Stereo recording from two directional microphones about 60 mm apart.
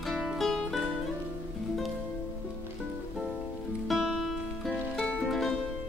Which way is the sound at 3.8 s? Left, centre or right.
Centre.